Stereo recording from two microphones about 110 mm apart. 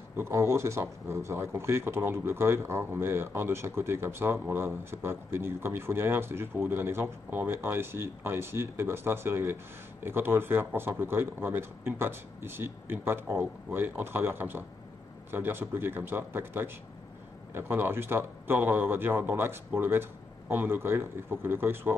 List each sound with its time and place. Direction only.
0.2 s speech: 25° right (ahead or behind)